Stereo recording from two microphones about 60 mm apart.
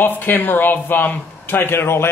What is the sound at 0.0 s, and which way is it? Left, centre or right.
Speech, left.